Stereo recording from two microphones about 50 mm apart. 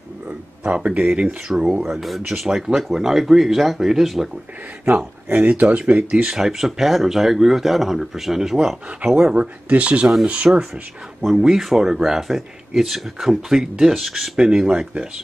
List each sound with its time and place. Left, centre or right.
0.7 s speech: right
1.5 s speech: centre
4.8 s speech: right
6.2 s speech: centre
9.2 s speech: right
11.2 s speech: centre
14.4 s speech: centre